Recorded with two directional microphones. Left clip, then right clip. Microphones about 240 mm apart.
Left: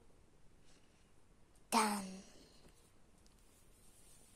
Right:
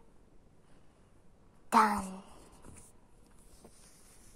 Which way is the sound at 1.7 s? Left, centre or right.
Centre.